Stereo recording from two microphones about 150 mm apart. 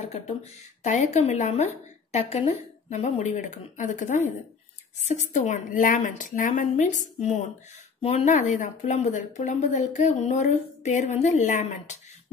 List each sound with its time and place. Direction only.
0.1 s a woman's voice: 50° left (ahead or behind)